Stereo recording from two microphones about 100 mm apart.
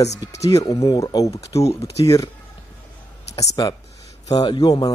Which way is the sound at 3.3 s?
35° left (ahead or behind).